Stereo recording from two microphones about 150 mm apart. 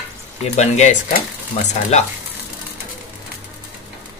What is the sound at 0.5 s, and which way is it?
Speech, 50° left (ahead or behind).